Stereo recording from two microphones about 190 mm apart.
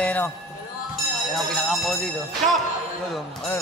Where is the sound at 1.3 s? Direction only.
Centre (ahead or behind).